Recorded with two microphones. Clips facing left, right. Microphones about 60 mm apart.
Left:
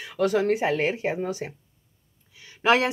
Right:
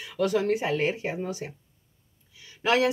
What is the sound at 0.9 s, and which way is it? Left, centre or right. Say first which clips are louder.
Speech: left 4 dB; left.